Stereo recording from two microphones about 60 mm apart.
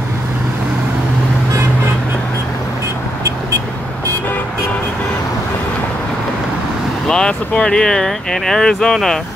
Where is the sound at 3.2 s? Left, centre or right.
Right.